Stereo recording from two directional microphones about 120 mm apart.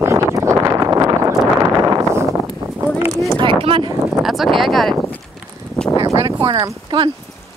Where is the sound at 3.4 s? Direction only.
50° right (ahead or behind).